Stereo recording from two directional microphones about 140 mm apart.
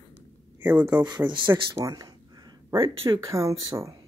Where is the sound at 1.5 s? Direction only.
20° right (ahead or behind); by 3.2 s 40° right (ahead or behind).